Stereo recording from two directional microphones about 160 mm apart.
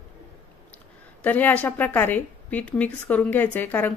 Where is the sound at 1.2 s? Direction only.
10° left (ahead or behind).